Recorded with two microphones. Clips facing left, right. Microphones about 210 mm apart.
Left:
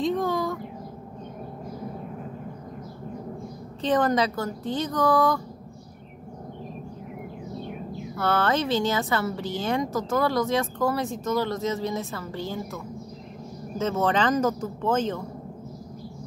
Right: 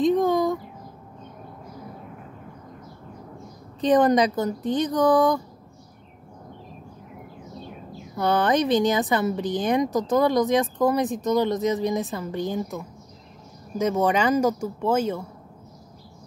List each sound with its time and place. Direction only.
0.0 s a sound: 20° right (ahead or behind)
3.8 s speech: 20° right (ahead or behind)
8.2 s a woman's voice: 15° right (ahead or behind)